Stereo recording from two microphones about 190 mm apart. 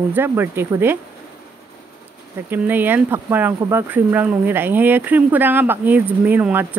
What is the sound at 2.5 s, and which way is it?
Speech, 10° right (ahead or behind).